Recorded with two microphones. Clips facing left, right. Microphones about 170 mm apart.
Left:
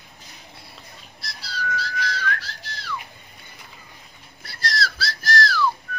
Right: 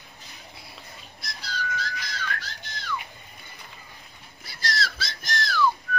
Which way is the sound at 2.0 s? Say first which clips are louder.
Left 6 dB; centre (ahead or behind).